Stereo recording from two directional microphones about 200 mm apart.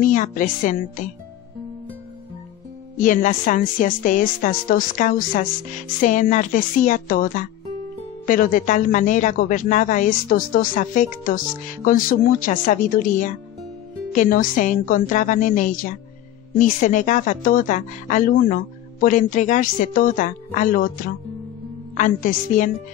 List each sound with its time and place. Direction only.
0.0 s speech: 40° left (ahead or behind)
3.0 s speech: 40° left (ahead or behind)